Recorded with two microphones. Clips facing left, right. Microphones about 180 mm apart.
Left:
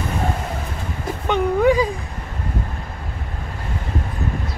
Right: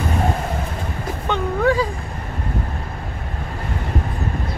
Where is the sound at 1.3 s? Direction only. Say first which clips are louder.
Left 3 dB; 15° left (ahead or behind).